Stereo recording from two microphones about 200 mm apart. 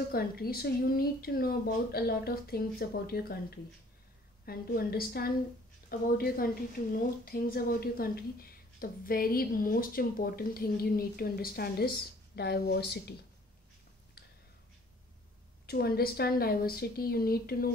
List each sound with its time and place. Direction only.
0.1 s a woman's voice: 50° left (ahead or behind)
15.6 s a woman's voice: 50° left (ahead or behind)